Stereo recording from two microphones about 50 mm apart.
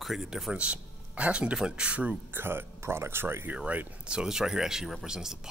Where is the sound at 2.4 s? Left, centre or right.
Right.